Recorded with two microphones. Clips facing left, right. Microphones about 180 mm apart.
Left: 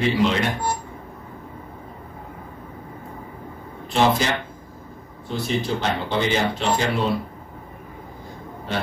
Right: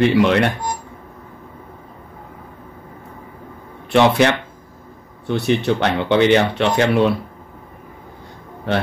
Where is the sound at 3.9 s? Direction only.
70° right (ahead or behind).